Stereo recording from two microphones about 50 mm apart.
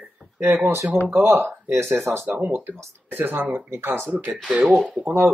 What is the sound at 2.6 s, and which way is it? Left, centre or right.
Speech, right.